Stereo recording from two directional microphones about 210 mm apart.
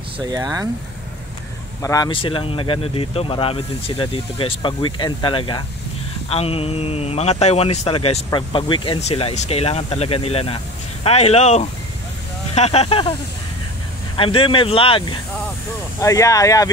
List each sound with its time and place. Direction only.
0.2 s speech: 20° right (ahead or behind)
1.8 s speech: 15° left (ahead or behind)
14.1 s speech: 25° left (ahead or behind)